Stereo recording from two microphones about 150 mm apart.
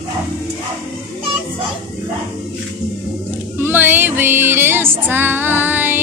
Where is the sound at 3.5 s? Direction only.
15° right (ahead or behind).